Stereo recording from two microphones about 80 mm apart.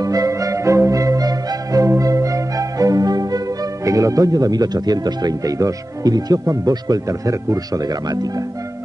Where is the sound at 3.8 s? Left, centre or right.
Right.